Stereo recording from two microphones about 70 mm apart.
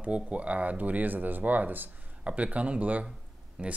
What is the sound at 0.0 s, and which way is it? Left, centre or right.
Speech, centre.